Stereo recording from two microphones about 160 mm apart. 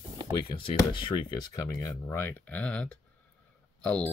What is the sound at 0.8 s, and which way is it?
Speech, 30° left (ahead or behind).